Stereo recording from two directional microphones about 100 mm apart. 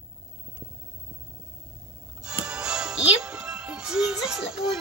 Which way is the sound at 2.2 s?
10° right (ahead or behind).